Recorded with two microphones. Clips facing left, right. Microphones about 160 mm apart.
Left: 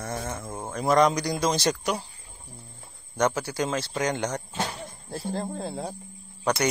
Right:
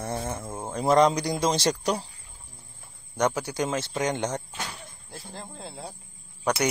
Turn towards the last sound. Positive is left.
turn(degrees=-10)  # may be behind; listen again after turning